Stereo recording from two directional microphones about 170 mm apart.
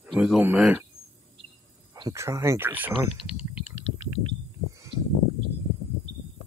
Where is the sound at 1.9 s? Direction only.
20° right (ahead or behind).